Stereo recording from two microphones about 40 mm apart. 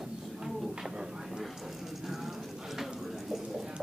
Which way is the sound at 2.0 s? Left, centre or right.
Centre.